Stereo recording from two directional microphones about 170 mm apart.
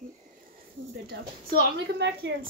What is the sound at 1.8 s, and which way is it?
Speech, 90° right.